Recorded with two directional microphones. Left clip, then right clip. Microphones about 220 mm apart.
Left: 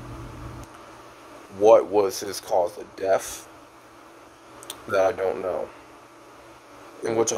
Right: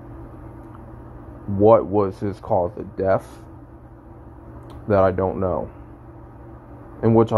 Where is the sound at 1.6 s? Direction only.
15° left (ahead or behind).